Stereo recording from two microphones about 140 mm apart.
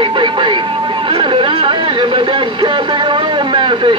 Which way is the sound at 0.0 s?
35° right (ahead or behind).